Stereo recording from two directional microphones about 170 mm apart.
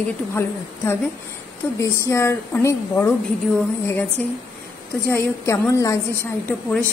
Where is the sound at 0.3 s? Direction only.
15° left (ahead or behind).